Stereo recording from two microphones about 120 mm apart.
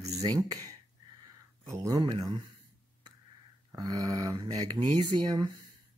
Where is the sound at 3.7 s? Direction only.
30° right (ahead or behind).